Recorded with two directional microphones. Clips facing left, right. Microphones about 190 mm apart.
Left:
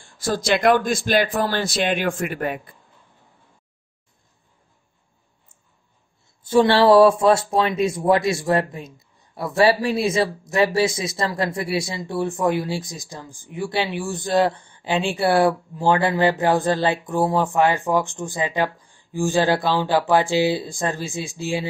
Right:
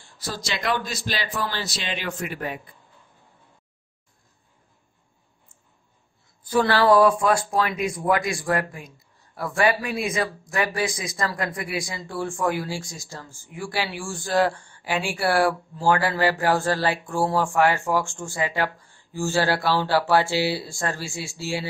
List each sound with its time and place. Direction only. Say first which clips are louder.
0.0 s a man's voice: left 9 dB; 50° left (ahead or behind)
6.4 s speech: left 5 dB; 25° left (ahead or behind)